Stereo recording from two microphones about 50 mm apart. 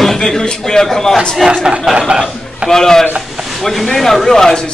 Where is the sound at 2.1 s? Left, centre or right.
Centre.